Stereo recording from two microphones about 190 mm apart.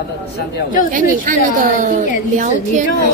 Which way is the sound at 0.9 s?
45° right (ahead or behind).